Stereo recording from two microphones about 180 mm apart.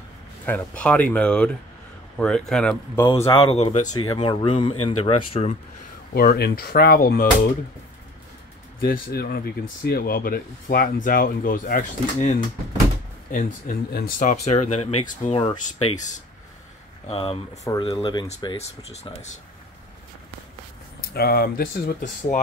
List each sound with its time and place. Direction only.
0.5 s speech: 10° left (ahead or behind)
3.1 s speech: 30° left (ahead or behind)
6.1 s speech: 60° left (ahead or behind)
8.8 s speech: 55° left (ahead or behind); by 15.3 s 40° left (ahead or behind)
17.1 s speech: 30° left (ahead or behind)
21.1 s speech: 60° left (ahead or behind)